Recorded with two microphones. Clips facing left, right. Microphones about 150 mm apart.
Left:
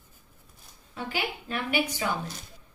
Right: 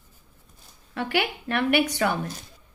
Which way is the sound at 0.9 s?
70° right (ahead or behind).